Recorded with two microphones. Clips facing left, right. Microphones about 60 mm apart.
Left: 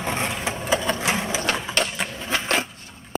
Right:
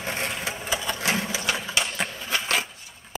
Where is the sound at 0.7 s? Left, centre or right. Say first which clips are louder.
Left 7 dB; left.